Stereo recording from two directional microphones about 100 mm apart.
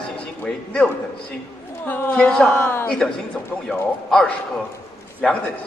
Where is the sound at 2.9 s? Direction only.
5° left (ahead or behind).